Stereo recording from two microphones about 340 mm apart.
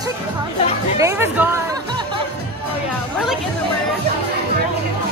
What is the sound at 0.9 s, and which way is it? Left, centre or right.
Music, centre.